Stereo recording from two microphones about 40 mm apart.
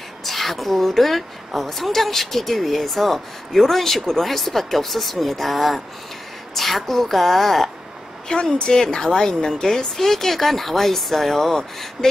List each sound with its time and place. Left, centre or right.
0.2 s a woman's voice: centre
8.4 s a woman's voice: left; by 12.1 s centre